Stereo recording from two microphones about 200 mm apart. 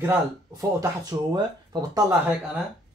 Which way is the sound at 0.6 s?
15° right (ahead or behind).